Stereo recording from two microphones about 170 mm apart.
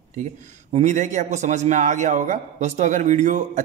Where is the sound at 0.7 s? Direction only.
45° right (ahead or behind).